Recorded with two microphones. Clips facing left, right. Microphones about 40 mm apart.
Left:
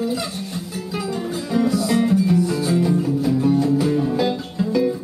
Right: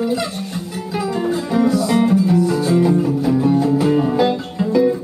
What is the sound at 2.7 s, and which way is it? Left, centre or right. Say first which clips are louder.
Music: right 3 dB; centre.